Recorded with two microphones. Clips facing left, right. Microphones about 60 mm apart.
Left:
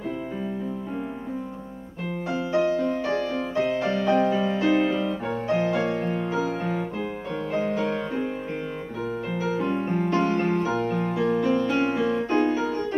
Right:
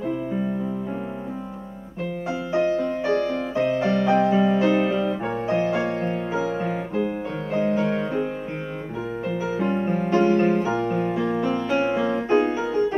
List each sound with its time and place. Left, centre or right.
2.2 s music: centre
2.8 s music: right
3.5 s music: centre
9.3 s music: centre